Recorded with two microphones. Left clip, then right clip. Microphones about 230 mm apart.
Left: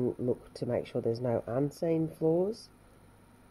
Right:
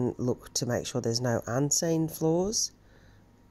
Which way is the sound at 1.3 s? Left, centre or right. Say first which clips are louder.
Right 1 dB; right.